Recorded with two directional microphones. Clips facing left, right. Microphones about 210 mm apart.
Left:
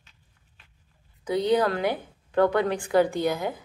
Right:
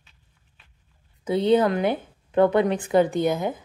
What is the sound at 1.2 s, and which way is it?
A woman's voice, 25° right (ahead or behind).